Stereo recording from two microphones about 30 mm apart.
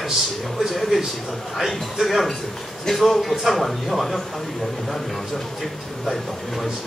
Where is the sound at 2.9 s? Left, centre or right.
Centre.